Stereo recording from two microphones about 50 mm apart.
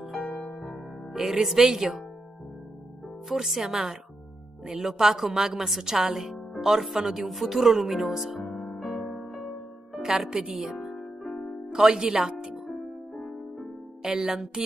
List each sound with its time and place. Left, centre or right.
0.1 s music: centre
1.1 s speech: centre
3.3 s a woman's voice: centre
8.5 s music: left
9.1 s music: centre
9.9 s speech: centre
11.0 s music: centre
11.7 s speech: centre
12.7 s music: centre
14.0 s speech: centre